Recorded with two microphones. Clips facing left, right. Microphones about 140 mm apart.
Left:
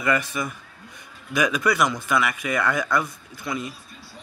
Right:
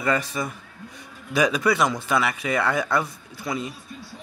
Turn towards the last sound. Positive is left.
turn(degrees=-30)  # may be behind; listen again after turning